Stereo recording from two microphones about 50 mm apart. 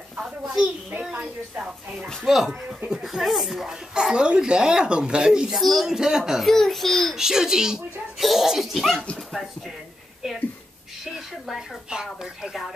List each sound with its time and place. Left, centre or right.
0.2 s a sound: centre
1.1 s speech: right
2.2 s speech: centre
3.9 s speech: centre
5.5 s speech: centre
6.4 s speech: centre
7.2 s speech: centre
11.1 s speech: centre